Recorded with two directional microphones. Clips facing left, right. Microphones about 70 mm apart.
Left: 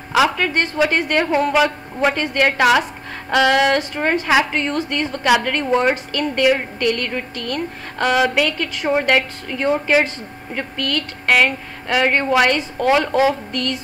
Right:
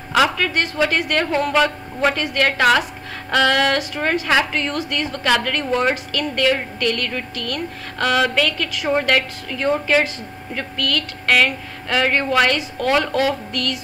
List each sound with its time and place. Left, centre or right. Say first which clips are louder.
0.1 s a woman's voice: left 1 dB; centre